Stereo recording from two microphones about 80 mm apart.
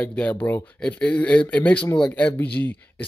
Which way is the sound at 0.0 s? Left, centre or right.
Centre.